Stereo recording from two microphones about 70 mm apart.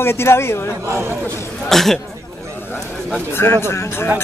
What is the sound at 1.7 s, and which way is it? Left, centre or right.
Speech, centre.